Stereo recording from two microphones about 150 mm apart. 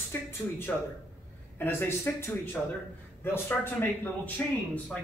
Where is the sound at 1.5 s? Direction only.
15° left (ahead or behind).